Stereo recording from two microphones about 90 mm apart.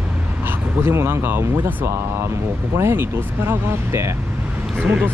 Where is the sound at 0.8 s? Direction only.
25° right (ahead or behind).